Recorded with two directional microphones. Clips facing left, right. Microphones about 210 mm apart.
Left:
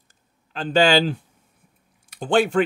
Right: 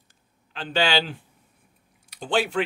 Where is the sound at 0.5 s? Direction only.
45° left (ahead or behind).